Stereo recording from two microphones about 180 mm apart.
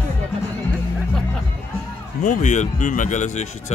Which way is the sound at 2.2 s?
45° left (ahead or behind).